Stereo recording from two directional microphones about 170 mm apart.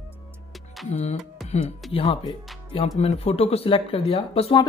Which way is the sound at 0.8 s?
40° left (ahead or behind).